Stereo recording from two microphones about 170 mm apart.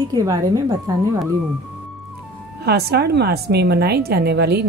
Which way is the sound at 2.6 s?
70° right (ahead or behind).